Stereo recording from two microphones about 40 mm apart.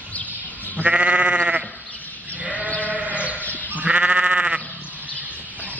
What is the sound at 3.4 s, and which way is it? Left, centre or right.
Sheep, left.